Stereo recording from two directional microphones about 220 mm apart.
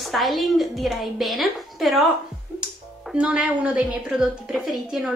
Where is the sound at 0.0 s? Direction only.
Centre (ahead or behind).